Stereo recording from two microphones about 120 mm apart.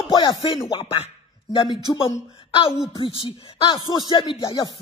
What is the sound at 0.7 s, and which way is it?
Speech, 50° left (ahead or behind).